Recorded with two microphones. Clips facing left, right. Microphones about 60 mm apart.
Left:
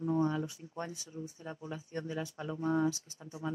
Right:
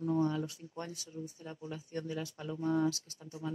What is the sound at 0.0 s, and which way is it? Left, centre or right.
Speech, left.